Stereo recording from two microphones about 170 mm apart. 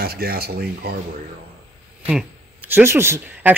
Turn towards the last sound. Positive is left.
turn(degrees=-15)  # may be behind; listen again after turning